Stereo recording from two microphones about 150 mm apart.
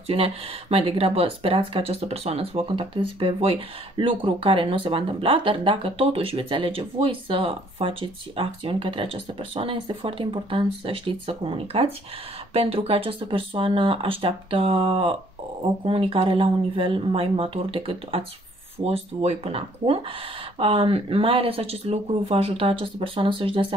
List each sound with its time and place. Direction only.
0.0 s speech: 40° right (ahead or behind)